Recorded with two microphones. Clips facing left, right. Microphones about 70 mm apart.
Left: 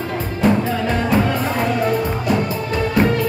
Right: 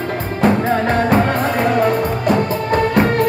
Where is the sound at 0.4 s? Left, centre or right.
Right.